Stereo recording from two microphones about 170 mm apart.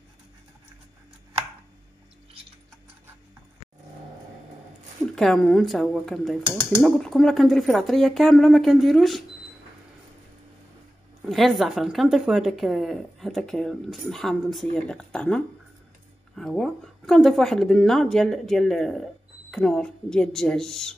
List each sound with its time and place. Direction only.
5.1 s speech: centre (ahead or behind)
11.2 s speech: centre (ahead or behind)